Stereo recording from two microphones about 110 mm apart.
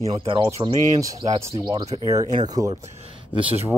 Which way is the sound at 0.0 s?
30° right (ahead or behind).